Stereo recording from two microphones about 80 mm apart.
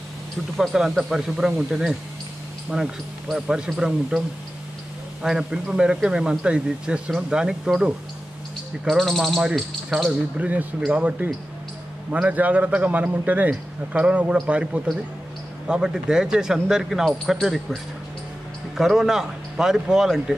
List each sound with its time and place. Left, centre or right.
0.6 s speech: centre
5.2 s speech: centre
8.8 s speech: centre
10.0 s a man's voice: centre
18.8 s speech: centre